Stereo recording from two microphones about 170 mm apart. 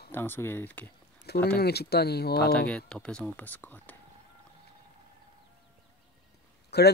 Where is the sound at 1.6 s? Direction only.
70° left (ahead or behind).